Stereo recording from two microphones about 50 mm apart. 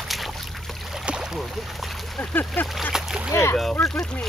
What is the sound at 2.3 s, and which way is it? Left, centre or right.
Speech, left.